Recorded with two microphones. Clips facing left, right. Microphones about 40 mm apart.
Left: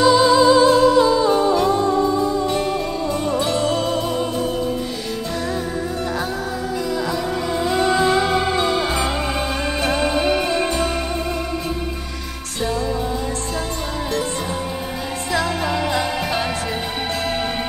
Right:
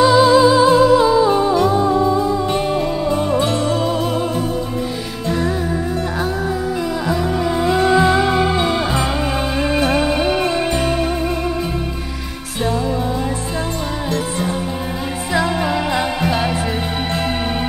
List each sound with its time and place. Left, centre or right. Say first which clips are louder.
0.0 s music: right 2 dB; centre
2.5 s music: right 3 dB; right
7.1 s music: right 4 dB; centre
15.3 s music: right 3 dB; centre